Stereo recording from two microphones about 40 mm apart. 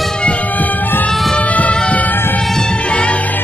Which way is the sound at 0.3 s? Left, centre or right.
Left.